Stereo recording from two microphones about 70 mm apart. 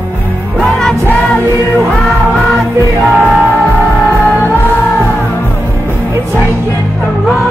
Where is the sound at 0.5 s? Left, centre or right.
Centre.